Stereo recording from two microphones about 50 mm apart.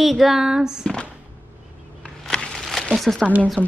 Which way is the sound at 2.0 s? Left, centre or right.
Centre.